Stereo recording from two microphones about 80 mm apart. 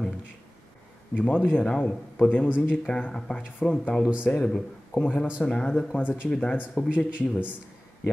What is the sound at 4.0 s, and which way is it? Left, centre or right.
Speech, centre.